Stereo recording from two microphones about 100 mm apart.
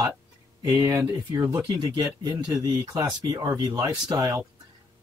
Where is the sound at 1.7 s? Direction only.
40° right (ahead or behind).